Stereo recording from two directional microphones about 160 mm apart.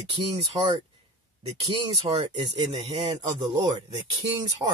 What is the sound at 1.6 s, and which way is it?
Speech, 35° right (ahead or behind).